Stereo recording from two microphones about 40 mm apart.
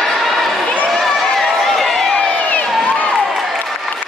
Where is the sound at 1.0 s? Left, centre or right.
Centre.